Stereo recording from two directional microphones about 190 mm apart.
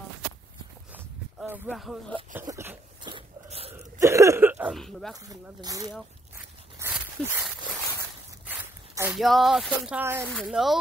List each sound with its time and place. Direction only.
0.9 s walk: 10° right (ahead or behind)
2.5 s dog: 10° right (ahead or behind)
3.0 s a sound: 25° right (ahead or behind)
4.0 s a sound: 15° right (ahead or behind)
4.7 s speech: centre (ahead or behind)
5.1 s speech: 20° right (ahead or behind)
6.8 s dog: 10° right (ahead or behind)
8.5 s speech: 10° right (ahead or behind)
10.2 s speech: centre (ahead or behind)